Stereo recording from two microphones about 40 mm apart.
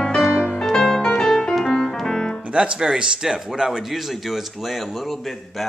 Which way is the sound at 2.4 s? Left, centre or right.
Right.